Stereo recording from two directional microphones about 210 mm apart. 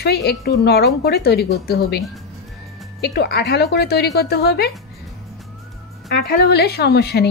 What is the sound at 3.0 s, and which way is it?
A woman's voice, 50° left (ahead or behind).